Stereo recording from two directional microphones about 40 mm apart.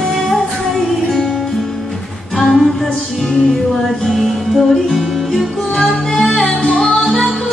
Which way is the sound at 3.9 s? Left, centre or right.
Centre.